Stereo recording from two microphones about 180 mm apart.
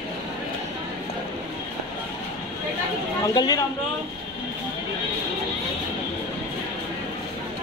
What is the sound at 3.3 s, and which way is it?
Speech, 20° left (ahead or behind).